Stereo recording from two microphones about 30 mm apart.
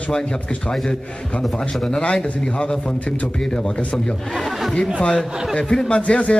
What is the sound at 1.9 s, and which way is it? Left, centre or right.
Speech, left.